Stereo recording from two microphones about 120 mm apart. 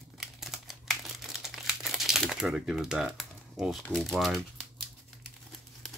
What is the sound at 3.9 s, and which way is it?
Speech, centre (ahead or behind).